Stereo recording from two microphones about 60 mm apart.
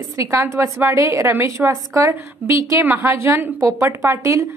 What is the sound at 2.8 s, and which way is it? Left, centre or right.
Speech, right.